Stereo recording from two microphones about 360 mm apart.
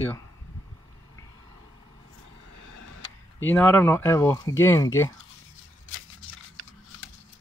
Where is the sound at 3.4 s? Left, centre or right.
Centre.